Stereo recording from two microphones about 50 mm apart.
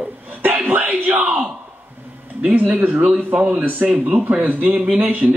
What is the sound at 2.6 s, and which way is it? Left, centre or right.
A man's voice, right.